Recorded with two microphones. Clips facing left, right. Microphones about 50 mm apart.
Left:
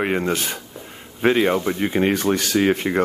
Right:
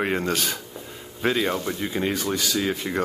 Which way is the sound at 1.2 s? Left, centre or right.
Left.